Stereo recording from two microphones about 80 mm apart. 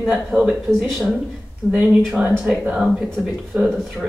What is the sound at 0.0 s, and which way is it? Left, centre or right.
Speech, centre.